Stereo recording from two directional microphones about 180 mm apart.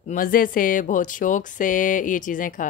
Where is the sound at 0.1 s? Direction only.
50° left (ahead or behind).